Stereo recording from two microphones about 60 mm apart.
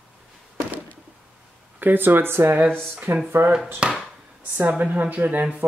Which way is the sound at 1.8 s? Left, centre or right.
Right.